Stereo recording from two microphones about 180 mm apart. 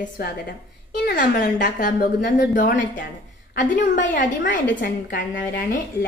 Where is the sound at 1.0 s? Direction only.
50° left (ahead or behind).